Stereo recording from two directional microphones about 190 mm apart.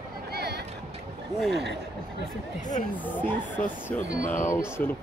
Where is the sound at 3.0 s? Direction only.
10° left (ahead or behind).